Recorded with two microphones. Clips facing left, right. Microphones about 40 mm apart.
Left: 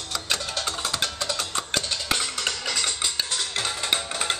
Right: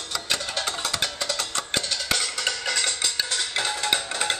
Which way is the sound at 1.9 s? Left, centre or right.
Centre.